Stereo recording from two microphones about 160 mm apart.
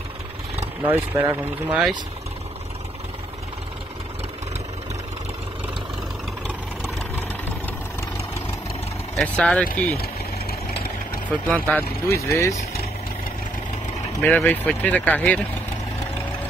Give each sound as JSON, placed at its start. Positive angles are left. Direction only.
{"t": 0.8, "sound": "speech", "side_deg": -10}
{"t": 9.1, "sound": "speech", "side_deg": 5}
{"t": 9.9, "sound": "engine", "side_deg": 75}
{"t": 11.2, "sound": "speech", "side_deg": 10}
{"t": 14.2, "sound": "speech", "side_deg": 10}